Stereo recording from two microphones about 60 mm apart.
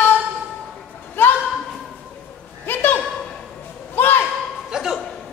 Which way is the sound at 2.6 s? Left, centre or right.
Left.